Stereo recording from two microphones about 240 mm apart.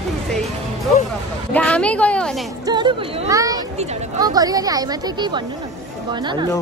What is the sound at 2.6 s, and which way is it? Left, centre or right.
Speech, centre.